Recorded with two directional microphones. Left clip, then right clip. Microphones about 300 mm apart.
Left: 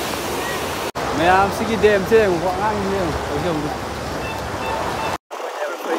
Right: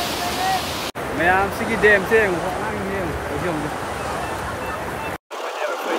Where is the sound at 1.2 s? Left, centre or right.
Centre.